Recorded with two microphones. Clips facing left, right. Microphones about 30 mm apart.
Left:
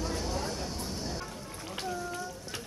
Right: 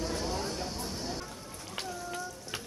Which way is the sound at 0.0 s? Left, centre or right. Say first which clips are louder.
Even; centre.